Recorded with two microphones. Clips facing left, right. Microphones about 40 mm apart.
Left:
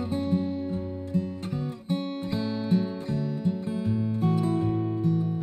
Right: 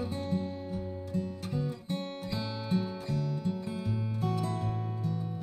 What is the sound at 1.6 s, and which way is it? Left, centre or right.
Music, left.